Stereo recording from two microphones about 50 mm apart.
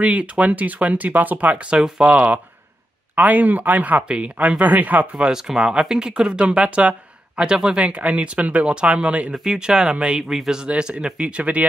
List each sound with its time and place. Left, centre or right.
0.0 s speech: right
5.1 s speech: centre
9.3 s speech: centre